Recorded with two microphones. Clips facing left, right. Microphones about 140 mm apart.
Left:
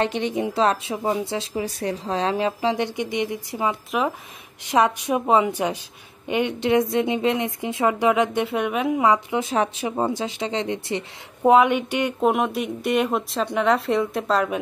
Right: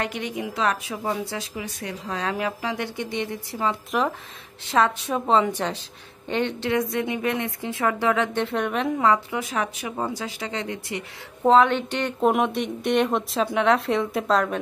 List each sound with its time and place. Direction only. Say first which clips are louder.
0.0 s speech: left 5 dB; 25° left (ahead or behind)
1.5 s speech: left 7 dB; 35° left (ahead or behind); by 3.7 s 15° left (ahead or behind)
3.9 s speech: even; 5° left (ahead or behind)
4.6 s a woman's voice: left 2 dB; 15° left (ahead or behind)
9.4 s speech: left 5 dB; 25° left (ahead or behind)
11.4 s speech: left 1 dB; 10° left (ahead or behind)